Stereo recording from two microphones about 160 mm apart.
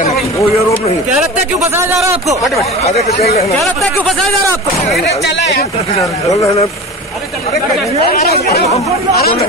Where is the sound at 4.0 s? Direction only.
Centre (ahead or behind).